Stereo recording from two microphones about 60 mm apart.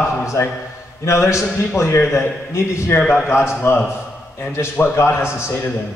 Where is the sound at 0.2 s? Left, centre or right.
Left.